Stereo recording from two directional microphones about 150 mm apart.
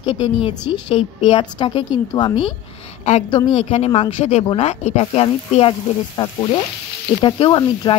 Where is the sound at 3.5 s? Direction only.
45° left (ahead or behind).